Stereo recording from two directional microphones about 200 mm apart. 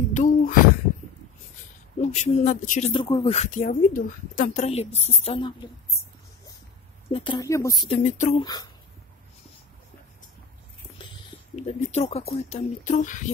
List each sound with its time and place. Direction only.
0.1 s speech: 40° left (ahead or behind)
2.0 s speech: 35° left (ahead or behind)
2.9 s speech: 25° left (ahead or behind)
7.1 s speech: 25° left (ahead or behind)
7.9 s speech: 35° left (ahead or behind)
8.4 s speech: 20° left (ahead or behind)
11.5 s speech: 30° left (ahead or behind)